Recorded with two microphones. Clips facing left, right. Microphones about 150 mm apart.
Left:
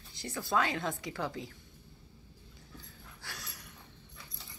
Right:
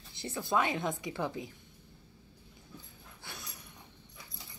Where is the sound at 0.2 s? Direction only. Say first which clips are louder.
Right 1 dB; 25° right (ahead or behind).